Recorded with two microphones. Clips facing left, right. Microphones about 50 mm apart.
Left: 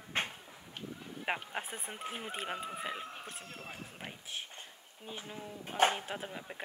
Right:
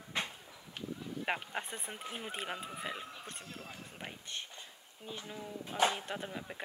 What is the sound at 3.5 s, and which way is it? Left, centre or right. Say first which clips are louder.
Speech: left 1 dB; left.